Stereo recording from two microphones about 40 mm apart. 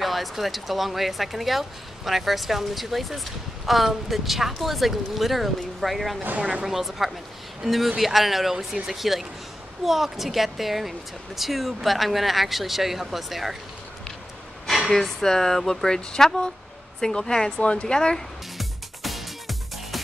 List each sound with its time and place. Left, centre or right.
0.0 s speech: centre
6.4 s a woman's voice: centre
14.9 s speech: centre
17.6 s speech: left
17.9 s speech: centre
18.6 s music: centre